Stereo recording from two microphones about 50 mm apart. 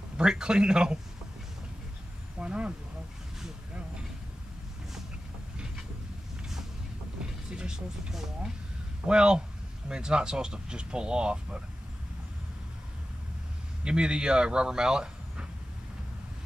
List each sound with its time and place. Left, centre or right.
0.2 s speech: centre
2.3 s speech: right
7.5 s speech: centre
13.8 s speech: centre